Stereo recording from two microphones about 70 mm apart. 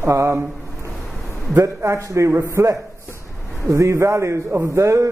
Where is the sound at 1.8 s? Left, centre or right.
Right.